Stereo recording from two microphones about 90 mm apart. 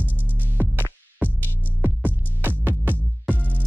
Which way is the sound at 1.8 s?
20° right (ahead or behind).